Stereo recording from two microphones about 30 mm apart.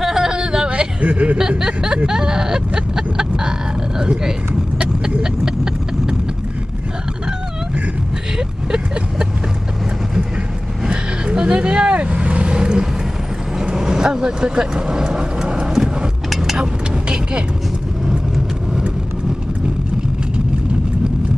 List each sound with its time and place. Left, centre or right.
0.0 s a sound: centre
0.3 s a sound: right
1.0 s speech: right
2.0 s vehicle: right
4.0 s speech: right
8.4 s vehicle: right
10.9 s vehicle: right
11.6 s vehicle: right
13.7 s speech: right